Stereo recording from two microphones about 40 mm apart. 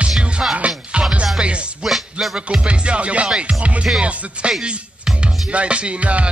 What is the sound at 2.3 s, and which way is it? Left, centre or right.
Music, right.